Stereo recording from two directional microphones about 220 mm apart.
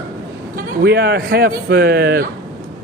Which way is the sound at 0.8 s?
50° right (ahead or behind).